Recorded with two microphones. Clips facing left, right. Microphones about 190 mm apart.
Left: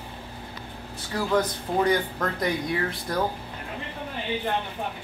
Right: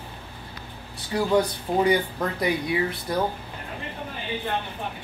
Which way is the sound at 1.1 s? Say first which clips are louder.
Right 3 dB; 15° right (ahead or behind).